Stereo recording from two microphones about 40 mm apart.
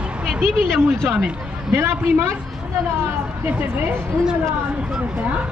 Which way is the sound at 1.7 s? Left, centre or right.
Right.